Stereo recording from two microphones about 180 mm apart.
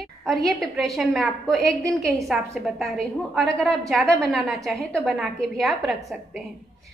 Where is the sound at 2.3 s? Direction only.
Centre (ahead or behind).